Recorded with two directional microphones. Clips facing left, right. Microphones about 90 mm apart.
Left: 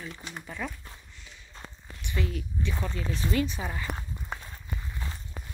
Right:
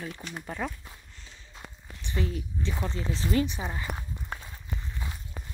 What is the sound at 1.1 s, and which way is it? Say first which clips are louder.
Walk: even; 30° right (ahead or behind).